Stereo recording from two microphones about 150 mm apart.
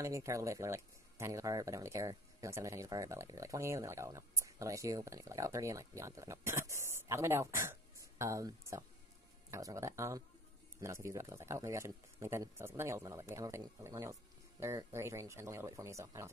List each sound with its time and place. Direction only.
0.0 s speech: 20° right (ahead or behind)